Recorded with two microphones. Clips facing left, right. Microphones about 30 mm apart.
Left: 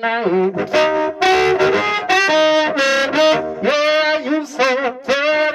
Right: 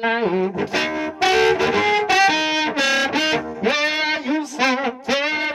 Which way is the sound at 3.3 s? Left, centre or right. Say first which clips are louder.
Left 4 dB; centre.